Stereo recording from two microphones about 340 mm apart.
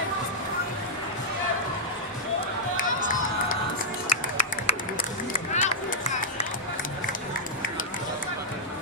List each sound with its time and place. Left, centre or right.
4.1 s run: centre